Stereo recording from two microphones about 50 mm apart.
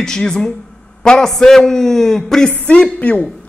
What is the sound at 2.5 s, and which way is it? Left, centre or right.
Speech, left.